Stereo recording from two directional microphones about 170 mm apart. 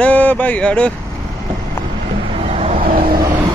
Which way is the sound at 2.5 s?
40° right (ahead or behind).